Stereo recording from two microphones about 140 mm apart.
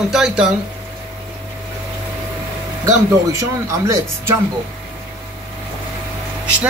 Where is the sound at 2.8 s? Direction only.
20° right (ahead or behind).